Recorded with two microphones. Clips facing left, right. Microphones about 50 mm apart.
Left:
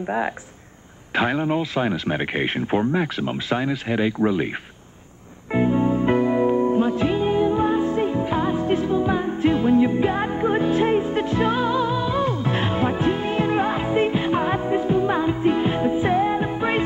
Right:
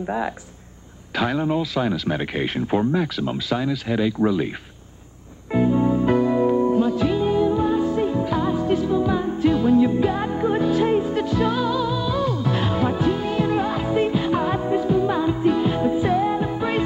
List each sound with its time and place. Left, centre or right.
1.1 s speech: left
5.5 s music: left